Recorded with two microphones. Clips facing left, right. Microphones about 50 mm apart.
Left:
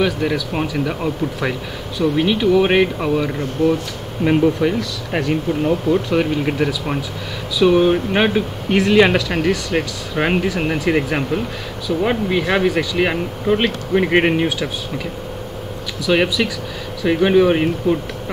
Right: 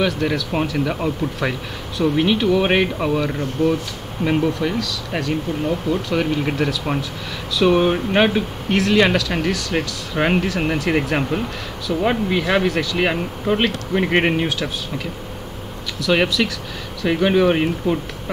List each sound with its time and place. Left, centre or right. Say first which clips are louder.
0.0 s speech: left 1 dB; centre
6.1 s speech: left 2 dB; centre
8.7 s speech: left 3 dB; centre
16.3 s speech: left 1 dB; centre
17.0 s speech: left 3 dB; centre